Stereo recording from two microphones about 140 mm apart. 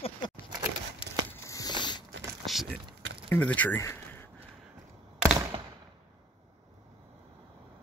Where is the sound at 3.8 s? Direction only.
20° left (ahead or behind).